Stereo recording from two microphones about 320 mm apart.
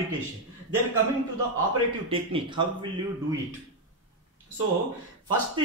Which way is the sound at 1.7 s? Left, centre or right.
Centre.